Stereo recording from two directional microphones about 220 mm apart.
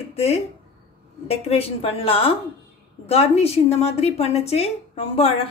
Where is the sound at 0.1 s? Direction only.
30° left (ahead or behind).